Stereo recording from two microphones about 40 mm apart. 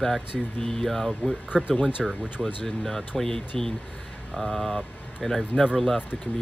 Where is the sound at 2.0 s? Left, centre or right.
Centre.